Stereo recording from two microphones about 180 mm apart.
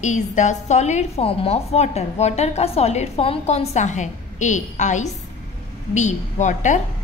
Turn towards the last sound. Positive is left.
turn(degrees=40)  # may be behind; listen again after turning